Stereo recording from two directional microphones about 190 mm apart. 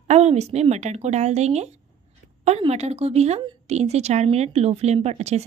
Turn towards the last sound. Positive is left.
turn(degrees=-35)  # may be behind; listen again after turning